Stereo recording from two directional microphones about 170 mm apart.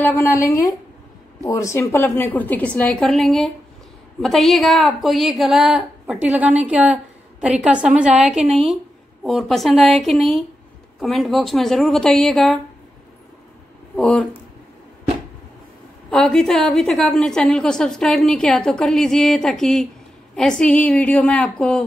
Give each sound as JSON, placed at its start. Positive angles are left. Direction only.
{"t": 0.0, "sound": "a woman's voice", "side_deg": 15}
{"t": 13.9, "sound": "a woman's voice", "side_deg": 5}
{"t": 16.1, "sound": "a woman's voice", "side_deg": 5}